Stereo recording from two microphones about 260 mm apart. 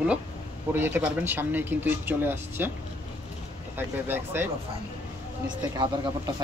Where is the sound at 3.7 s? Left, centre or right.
Centre.